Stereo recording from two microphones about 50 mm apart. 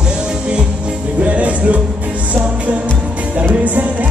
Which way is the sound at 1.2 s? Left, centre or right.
Right.